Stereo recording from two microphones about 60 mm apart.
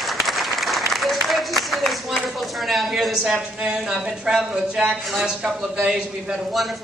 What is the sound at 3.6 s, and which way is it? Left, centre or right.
Speech, centre.